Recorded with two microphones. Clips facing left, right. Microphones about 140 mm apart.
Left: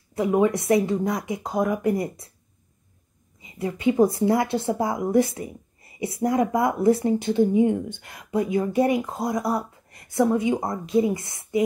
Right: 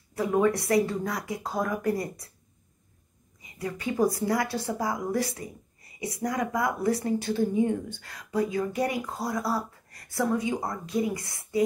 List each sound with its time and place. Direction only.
0.1 s a woman's voice: 20° left (ahead or behind)
3.3 s a woman's voice: 25° left (ahead or behind)